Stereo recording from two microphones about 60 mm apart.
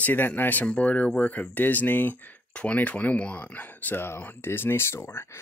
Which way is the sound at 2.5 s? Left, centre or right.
Left.